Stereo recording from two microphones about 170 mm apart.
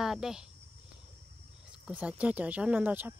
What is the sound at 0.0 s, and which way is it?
Speech, 5° right (ahead or behind).